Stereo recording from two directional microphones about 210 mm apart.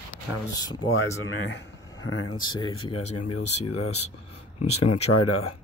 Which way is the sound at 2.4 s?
20° left (ahead or behind).